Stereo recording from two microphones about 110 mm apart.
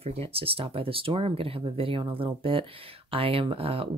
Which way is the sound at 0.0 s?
65° right (ahead or behind).